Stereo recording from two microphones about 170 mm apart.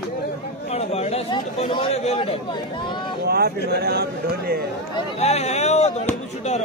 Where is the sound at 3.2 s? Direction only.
65° right (ahead or behind).